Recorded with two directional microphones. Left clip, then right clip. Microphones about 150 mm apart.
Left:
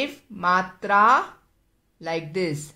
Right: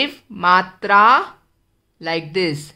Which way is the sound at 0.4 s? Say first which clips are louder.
Right 7 dB; 20° right (ahead or behind).